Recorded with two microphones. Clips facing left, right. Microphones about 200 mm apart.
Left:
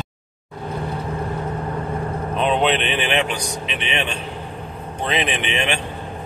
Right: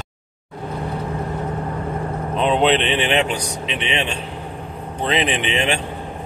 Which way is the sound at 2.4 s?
30° right (ahead or behind).